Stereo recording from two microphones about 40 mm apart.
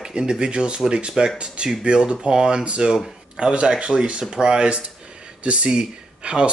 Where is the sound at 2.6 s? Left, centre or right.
Right.